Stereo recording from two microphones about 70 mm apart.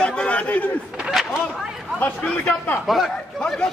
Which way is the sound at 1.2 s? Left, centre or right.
Centre.